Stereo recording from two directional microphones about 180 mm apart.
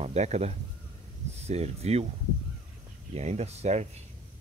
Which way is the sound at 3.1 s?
35° right (ahead or behind).